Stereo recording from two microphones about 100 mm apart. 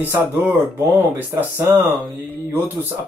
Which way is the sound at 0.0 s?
20° right (ahead or behind).